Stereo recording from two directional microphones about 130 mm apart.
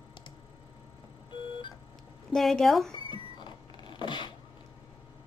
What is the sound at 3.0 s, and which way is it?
Vehicle, 40° left (ahead or behind).